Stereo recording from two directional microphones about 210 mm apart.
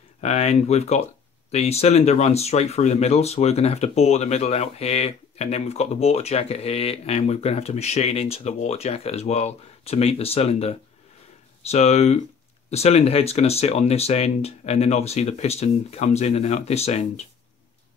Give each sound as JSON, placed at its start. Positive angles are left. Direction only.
{"t": 0.2, "sound": "speech", "side_deg": 30}